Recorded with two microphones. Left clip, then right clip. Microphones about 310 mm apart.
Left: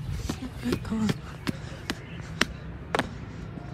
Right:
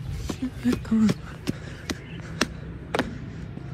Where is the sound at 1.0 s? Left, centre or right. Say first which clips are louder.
Right 4 dB; centre.